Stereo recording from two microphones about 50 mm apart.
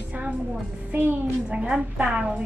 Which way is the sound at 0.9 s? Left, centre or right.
Right.